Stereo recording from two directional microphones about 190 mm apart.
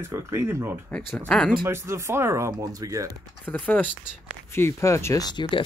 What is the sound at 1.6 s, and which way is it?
Speech, 15° right (ahead or behind).